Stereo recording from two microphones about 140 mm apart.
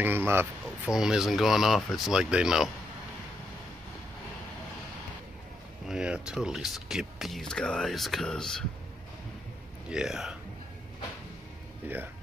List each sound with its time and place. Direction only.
0.0 s speech: 15° right (ahead or behind)
0.8 s speech: 5° right (ahead or behind)
5.9 s speech: 5° right (ahead or behind)
9.8 s speech: 5° right (ahead or behind)
11.8 s a sound: 10° right (ahead or behind)